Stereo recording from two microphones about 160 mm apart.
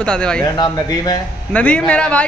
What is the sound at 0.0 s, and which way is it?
Speech, 5° left (ahead or behind).